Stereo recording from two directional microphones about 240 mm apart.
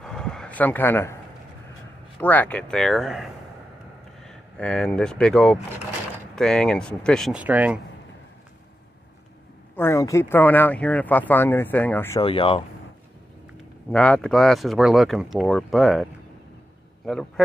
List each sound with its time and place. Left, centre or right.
0.0 s a sound: centre
2.1 s speech: centre
9.8 s speech: centre
12.2 s speech: left
13.8 s a man's voice: centre